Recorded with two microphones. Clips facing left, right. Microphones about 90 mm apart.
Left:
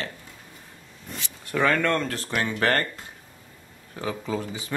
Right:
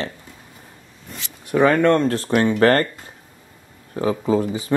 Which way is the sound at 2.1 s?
35° right (ahead or behind).